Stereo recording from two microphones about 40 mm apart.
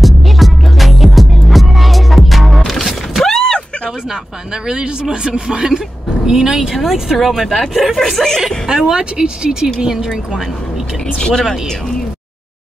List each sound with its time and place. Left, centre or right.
0.0 s music: centre
3.3 s a sound: centre
4.6 s speech: centre
8.6 s speech: centre
11.1 s speech: centre